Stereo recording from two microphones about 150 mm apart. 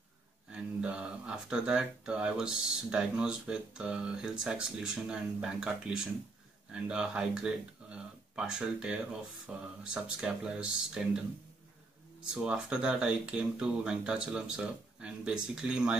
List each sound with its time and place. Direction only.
0.5 s speech: 5° right (ahead or behind)
12.2 s speech: 5° right (ahead or behind)